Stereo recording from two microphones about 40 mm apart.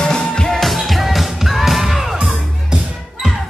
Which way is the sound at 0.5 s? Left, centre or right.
Centre.